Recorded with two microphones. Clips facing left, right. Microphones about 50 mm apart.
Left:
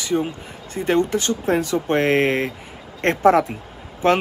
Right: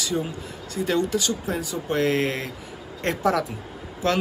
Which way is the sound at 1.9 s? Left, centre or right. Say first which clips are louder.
Left 4 dB; left.